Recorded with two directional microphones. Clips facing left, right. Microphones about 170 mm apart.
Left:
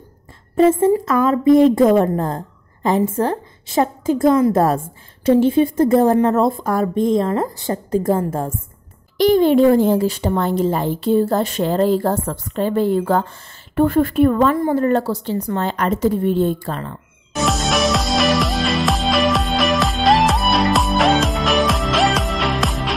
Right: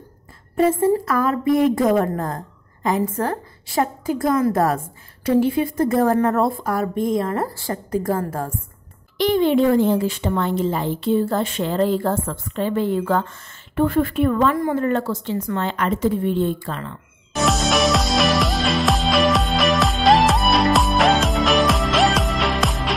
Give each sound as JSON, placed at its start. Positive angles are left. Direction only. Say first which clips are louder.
{"t": 0.6, "sound": "a woman's voice", "louder": "left 4 dB", "side_deg": 20}
{"t": 9.2, "sound": "a woman's voice", "louder": "left 4 dB", "side_deg": 40}
{"t": 17.3, "sound": "music", "louder": "even", "side_deg": 0}